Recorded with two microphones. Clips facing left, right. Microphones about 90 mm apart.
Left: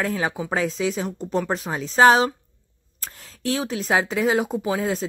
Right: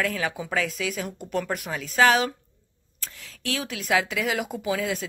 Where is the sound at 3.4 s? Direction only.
35° left (ahead or behind).